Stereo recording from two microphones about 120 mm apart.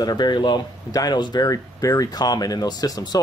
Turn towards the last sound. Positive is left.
turn(degrees=35)  # may be behind; listen again after turning